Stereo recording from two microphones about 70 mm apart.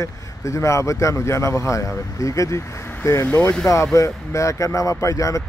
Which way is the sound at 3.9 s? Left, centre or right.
Left.